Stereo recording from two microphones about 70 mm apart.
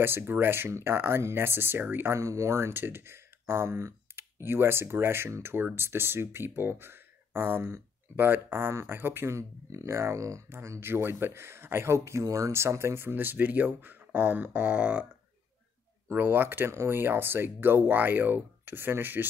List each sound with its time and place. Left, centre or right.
0.0 s speech: right
16.1 s speech: right